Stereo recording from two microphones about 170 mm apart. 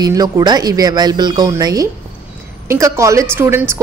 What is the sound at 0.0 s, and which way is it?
A woman's voice, 20° right (ahead or behind).